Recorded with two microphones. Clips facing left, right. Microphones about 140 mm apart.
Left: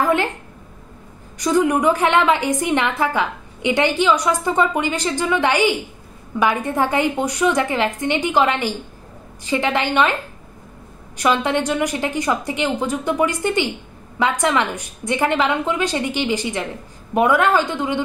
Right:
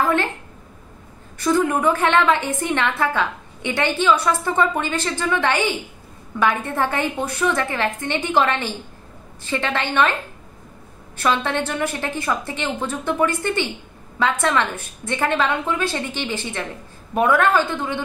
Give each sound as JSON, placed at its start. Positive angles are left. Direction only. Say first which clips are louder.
{"t": 0.0, "sound": "a sound", "louder": "left 2 dB", "side_deg": 15}
{"t": 1.4, "sound": "a woman's voice", "louder": "left 2 dB", "side_deg": 15}
{"t": 11.1, "sound": "a woman's voice", "louder": "left 3 dB", "side_deg": 15}